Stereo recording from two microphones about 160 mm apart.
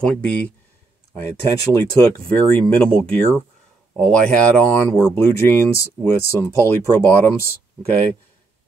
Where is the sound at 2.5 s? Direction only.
5° left (ahead or behind).